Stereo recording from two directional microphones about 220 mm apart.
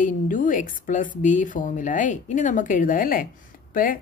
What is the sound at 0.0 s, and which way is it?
A woman's voice, 35° left (ahead or behind).